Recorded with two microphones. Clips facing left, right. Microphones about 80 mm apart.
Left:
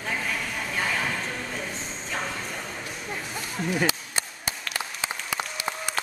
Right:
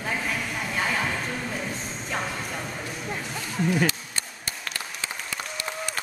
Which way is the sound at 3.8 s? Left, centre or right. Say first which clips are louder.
Left 1 dB; centre.